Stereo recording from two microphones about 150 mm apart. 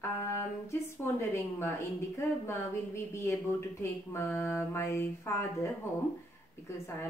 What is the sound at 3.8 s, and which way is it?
A woman's voice, 20° left (ahead or behind).